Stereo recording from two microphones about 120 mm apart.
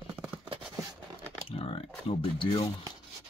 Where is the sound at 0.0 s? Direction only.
15° right (ahead or behind).